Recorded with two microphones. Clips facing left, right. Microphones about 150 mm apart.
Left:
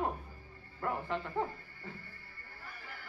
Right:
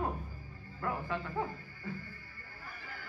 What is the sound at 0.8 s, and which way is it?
Speech, 25° left (ahead or behind).